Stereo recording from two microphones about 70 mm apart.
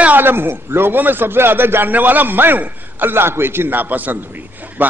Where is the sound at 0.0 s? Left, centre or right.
Right.